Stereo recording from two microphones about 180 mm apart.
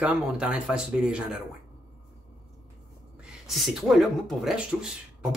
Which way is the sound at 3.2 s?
5° right (ahead or behind).